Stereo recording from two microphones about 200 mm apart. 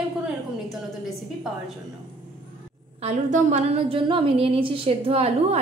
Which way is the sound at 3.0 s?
35° right (ahead or behind).